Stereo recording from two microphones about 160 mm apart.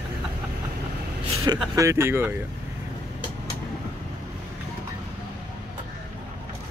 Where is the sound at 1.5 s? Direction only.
25° right (ahead or behind).